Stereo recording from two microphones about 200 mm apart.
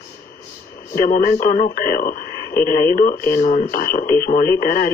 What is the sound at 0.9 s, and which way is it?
Speech, 45° left (ahead or behind).